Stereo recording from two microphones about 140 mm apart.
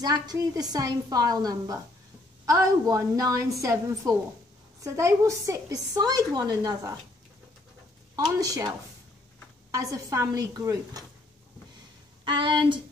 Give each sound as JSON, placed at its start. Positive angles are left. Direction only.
{"t": 0.0, "sound": "a woman's voice", "side_deg": -25}
{"t": 8.2, "sound": "a woman's voice", "side_deg": -25}
{"t": 12.3, "sound": "speech", "side_deg": -35}